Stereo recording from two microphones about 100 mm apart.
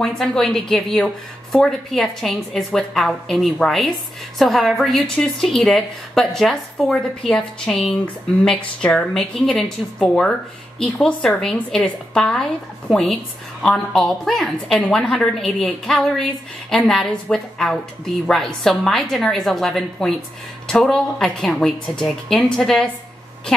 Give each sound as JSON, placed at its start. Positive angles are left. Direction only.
{"t": 0.0, "sound": "a woman's voice", "side_deg": 5}